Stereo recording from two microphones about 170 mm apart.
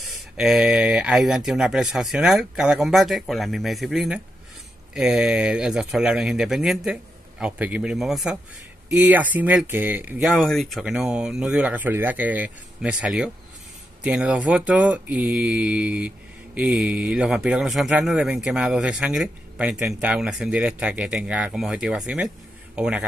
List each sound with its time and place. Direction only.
0.0 s speech: centre (ahead or behind)
10.3 s speech: centre (ahead or behind)